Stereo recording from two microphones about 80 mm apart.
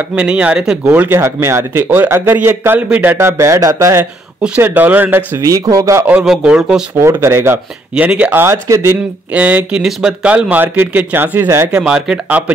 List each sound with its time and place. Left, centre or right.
0.1 s speech: centre
0.8 s speech: right
3.2 s speech: right
4.6 s speech: right
5.4 s speech: right
6.4 s speech: centre
7.0 s speech: right
7.9 s speech: centre
8.4 s speech: right
9.3 s speech: centre
11.7 s speech: centre